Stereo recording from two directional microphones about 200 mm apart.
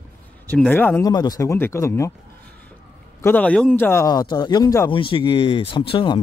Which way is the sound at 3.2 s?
10° left (ahead or behind).